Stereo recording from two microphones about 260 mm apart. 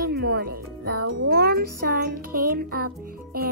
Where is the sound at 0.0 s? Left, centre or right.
Right.